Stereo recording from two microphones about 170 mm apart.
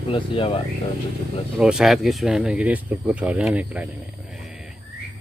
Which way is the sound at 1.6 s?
5° right (ahead or behind).